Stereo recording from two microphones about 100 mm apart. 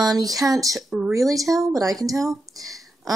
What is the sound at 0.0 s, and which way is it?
Speech, 40° right (ahead or behind).